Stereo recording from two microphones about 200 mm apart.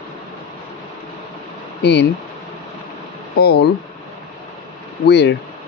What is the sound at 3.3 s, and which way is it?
Speech, 55° left (ahead or behind).